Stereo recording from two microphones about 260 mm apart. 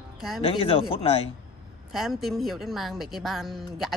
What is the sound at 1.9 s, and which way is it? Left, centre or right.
Speech, centre.